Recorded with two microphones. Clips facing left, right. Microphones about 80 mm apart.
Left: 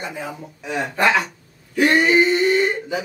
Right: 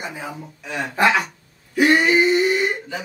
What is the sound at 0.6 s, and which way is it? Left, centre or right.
Speech, centre.